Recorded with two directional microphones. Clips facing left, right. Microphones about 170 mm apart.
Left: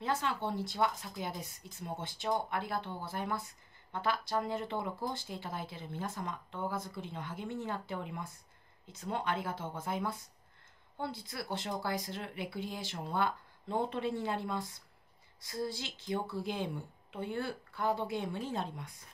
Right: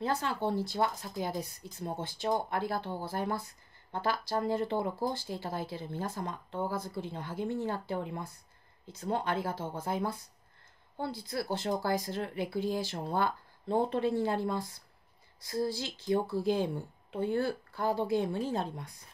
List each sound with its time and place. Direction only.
0.0 s speech: 35° right (ahead or behind)